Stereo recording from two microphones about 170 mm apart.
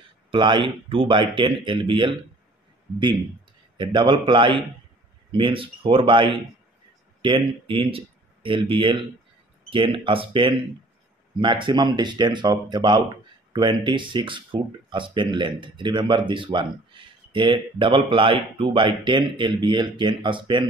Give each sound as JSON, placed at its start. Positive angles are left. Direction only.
{"t": 0.3, "sound": "speech", "side_deg": -30}
{"t": 3.7, "sound": "speech", "side_deg": -25}